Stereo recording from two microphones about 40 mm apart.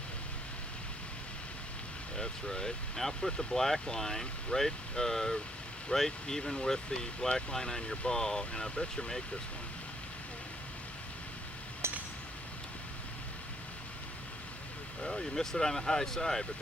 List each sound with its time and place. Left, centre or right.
2.1 s speech: centre
11.8 s a sound: right
15.0 s speech: centre